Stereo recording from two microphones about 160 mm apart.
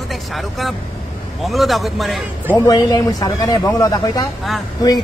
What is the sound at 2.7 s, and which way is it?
Speech, 20° left (ahead or behind).